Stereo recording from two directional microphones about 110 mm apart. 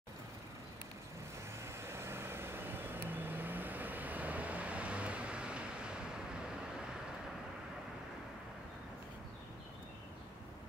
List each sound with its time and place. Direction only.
1.7 s vehicle: 25° right (ahead or behind); by 6.4 s 10° right (ahead or behind)